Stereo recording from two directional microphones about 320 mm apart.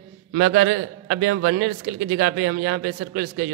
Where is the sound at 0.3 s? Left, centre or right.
Right.